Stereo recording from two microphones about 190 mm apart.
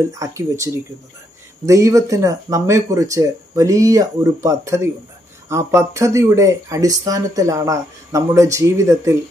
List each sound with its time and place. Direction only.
0.1 s speech: 15° right (ahead or behind)
1.7 s speech: 15° right (ahead or behind)